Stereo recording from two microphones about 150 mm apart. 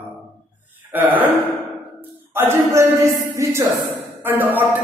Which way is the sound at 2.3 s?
15° right (ahead or behind).